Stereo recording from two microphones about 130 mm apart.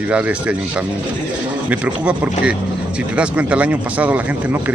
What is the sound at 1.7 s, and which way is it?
Speech, 10° right (ahead or behind).